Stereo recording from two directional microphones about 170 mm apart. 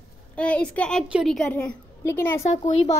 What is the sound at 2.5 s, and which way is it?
Speech, 40° left (ahead or behind).